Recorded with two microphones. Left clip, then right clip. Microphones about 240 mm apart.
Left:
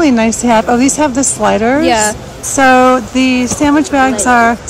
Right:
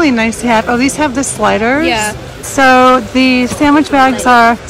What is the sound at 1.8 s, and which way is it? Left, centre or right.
Speech, left.